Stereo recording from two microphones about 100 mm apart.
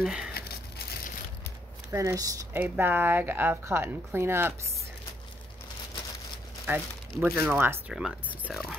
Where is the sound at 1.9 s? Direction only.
30° right (ahead or behind).